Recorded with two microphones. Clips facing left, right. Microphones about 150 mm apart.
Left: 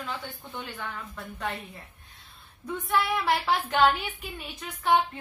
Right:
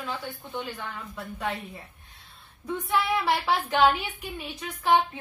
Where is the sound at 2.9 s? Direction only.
Centre (ahead or behind).